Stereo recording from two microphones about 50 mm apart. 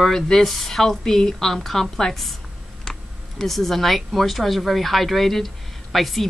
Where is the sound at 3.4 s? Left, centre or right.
Centre.